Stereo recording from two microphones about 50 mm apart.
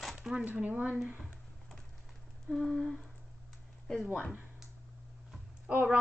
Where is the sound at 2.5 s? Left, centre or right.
Centre.